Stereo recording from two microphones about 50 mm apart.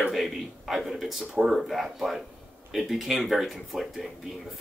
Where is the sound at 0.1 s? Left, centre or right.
Centre.